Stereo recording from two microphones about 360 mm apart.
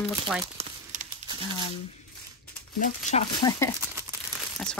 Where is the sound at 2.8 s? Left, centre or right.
Centre.